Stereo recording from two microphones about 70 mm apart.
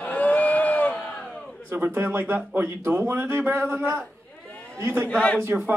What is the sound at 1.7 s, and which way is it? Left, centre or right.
Speech, right.